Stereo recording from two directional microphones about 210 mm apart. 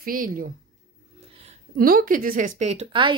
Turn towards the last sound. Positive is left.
turn(degrees=-25)  # may be behind; listen again after turning